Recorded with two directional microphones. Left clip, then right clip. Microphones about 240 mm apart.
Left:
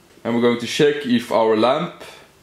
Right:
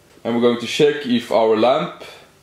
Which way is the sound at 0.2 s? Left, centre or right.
Centre.